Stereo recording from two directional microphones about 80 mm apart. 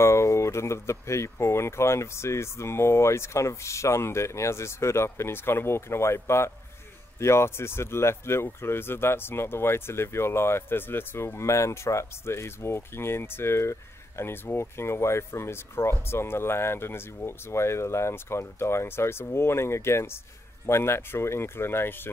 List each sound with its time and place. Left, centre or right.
0.0 s speech: left